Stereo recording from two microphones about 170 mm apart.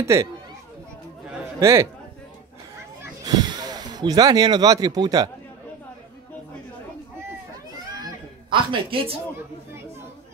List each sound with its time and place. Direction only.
0.0 s a man's voice: 15° right (ahead or behind)
1.6 s a man's voice: 15° right (ahead or behind)
3.0 s speech: 20° right (ahead or behind)
8.0 s a sound: 30° right (ahead or behind)